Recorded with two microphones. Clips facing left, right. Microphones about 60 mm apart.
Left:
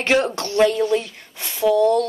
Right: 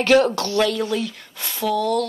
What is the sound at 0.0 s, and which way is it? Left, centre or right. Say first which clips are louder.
A woman's voice: right 3 dB; left.